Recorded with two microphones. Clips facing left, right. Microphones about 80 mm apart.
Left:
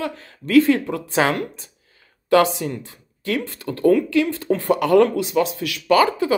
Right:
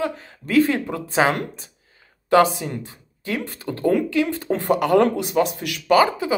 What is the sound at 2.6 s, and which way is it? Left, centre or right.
A woman's voice, right.